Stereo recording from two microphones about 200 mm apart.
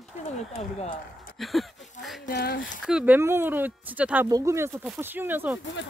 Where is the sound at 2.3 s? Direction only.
50° left (ahead or behind).